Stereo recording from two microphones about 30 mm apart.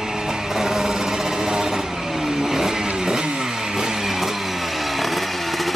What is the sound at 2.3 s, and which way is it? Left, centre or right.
Vehicle, centre.